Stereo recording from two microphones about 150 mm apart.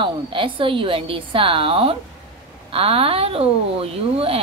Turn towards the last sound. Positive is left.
turn(degrees=-40)  # may be behind; listen again after turning